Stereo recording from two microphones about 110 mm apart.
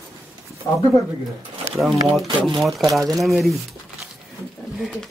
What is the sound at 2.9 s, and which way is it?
Speech, 30° right (ahead or behind).